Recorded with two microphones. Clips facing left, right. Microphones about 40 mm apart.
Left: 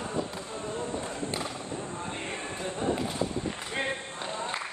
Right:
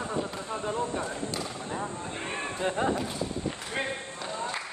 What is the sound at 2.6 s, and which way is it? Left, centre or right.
Speech, right.